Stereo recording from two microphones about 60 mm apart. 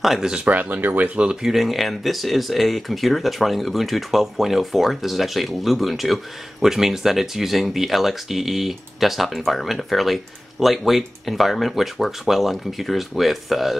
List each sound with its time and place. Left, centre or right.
0.0 s speech: centre
0.5 s speech: right
1.4 s speech: centre